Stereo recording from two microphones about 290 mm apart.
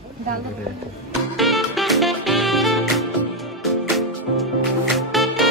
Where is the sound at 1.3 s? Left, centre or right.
Centre.